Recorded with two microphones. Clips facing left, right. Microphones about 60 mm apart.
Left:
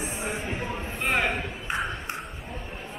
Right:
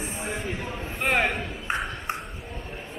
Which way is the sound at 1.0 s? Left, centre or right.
Right.